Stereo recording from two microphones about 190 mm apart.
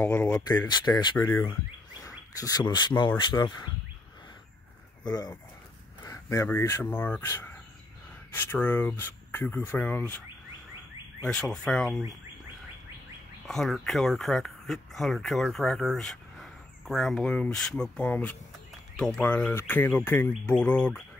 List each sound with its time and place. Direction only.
0.0 s speech: 5° left (ahead or behind)
0.7 s speech: 20° left (ahead or behind)
1.1 s speech: 10° left (ahead or behind)
1.5 s a sound: 15° left (ahead or behind)
3.2 s speech: 25° left (ahead or behind)
5.0 s speech: 20° left (ahead or behind)
11.2 s speech: 5° left (ahead or behind)
13.5 s speech: centre (ahead or behind)